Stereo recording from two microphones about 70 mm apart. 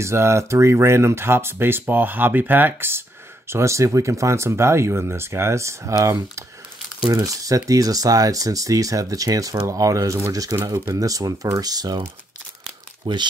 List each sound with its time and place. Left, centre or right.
0.0 s speech: right
3.4 s speech: right
11.0 s speech: right
13.0 s speech: right